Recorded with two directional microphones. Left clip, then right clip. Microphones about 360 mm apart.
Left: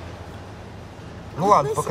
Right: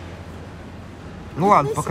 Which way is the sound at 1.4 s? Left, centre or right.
Centre.